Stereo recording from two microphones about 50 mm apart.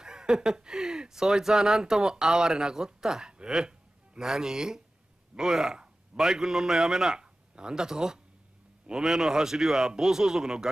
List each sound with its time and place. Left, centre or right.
0.0 s a man's voice: centre